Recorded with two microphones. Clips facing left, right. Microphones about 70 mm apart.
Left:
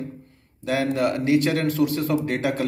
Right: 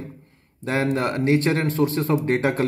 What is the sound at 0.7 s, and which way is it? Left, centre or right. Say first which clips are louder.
A man's voice: even; right.